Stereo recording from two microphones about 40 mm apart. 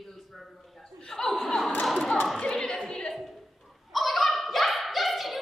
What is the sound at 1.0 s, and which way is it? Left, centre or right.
Chuckle, centre.